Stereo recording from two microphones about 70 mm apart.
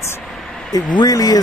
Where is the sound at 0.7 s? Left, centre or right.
Left.